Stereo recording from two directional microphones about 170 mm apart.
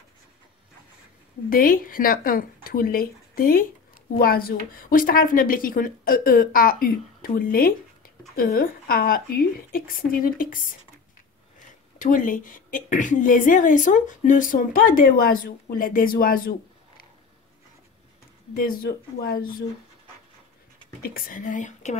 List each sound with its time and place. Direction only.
1.5 s speech: 55° left (ahead or behind)
12.0 s a woman's voice: 50° left (ahead or behind)
18.5 s speech: 60° left (ahead or behind)
21.0 s a woman's voice: 60° left (ahead or behind)